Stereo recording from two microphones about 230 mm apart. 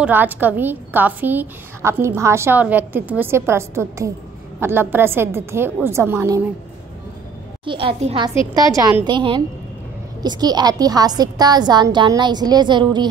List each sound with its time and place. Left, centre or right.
0.0 s a woman's voice: centre
7.6 s a woman's voice: right